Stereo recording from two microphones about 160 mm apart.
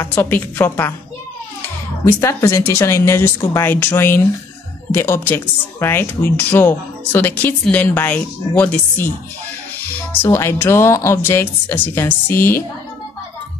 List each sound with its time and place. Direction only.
0.0 s speech: 15° left (ahead or behind)
2.0 s speech: 15° left (ahead or behind)
10.2 s speech: 15° left (ahead or behind)